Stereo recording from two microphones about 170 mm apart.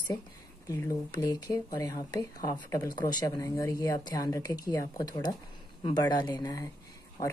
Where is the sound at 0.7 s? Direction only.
20° left (ahead or behind).